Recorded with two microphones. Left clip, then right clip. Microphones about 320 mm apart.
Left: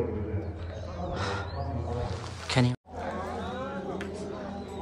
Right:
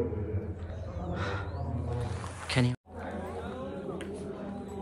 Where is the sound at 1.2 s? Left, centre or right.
Centre.